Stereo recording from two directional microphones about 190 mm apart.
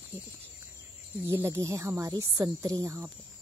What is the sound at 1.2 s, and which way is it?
Speech, 15° right (ahead or behind).